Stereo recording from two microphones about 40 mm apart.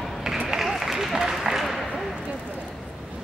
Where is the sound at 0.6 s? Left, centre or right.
Centre.